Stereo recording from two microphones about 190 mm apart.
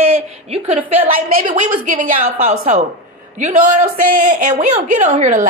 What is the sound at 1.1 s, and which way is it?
A woman's voice, 45° right (ahead or behind).